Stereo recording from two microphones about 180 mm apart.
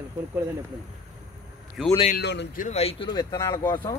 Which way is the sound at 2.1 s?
70° left (ahead or behind).